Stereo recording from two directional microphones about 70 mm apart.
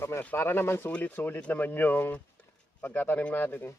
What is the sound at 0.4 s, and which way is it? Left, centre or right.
Speech, left.